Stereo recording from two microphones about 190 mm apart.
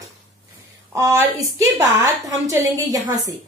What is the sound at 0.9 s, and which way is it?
A woman's voice, 15° right (ahead or behind).